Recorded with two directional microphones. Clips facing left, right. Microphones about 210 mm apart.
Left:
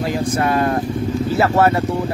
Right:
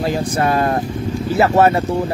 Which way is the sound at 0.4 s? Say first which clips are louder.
Right 1 dB; 35° right (ahead or behind).